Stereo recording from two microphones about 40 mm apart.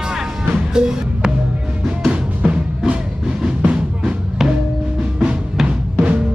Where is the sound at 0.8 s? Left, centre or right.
Centre.